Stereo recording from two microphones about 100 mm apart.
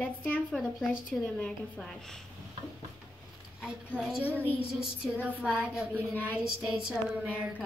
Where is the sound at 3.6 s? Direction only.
10° right (ahead or behind).